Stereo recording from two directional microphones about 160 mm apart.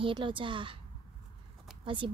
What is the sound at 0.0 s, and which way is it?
Speech, 30° right (ahead or behind).